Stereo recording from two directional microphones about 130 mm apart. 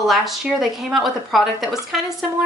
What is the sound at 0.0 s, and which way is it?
Speech, centre (ahead or behind).